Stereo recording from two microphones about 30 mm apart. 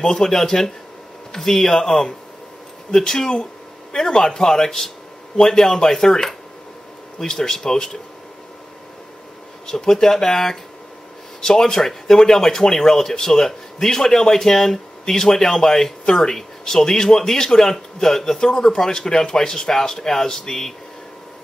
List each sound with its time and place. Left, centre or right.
0.0 s speech: left
3.9 s speech: left
9.7 s speech: centre
18.4 s speech: left